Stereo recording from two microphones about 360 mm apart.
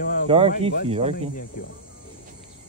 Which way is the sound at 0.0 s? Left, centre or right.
Left.